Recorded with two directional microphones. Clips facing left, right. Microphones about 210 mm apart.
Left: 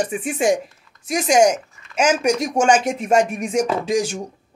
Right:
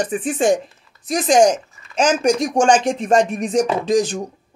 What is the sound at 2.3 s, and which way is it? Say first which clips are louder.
Speech: right 2 dB; 5° left (ahead or behind).